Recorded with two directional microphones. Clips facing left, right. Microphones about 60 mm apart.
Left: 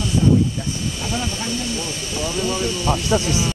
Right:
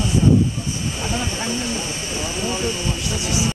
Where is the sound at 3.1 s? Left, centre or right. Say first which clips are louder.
Left 8 dB; left.